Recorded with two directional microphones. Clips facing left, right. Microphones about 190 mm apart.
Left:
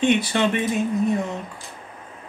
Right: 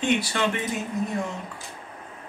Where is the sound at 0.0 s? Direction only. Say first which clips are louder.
Left 5 dB; 20° left (ahead or behind).